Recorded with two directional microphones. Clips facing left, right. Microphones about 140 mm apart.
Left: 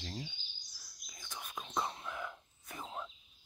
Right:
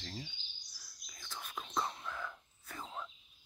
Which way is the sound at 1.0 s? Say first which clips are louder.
Even; 15° left (ahead or behind).